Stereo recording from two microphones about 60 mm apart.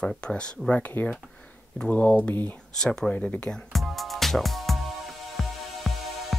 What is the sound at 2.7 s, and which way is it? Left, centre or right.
Speech, centre.